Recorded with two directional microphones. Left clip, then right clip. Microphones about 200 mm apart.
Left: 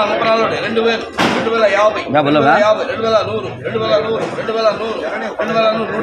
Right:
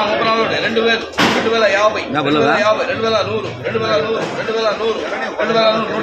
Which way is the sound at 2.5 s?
5° right (ahead or behind).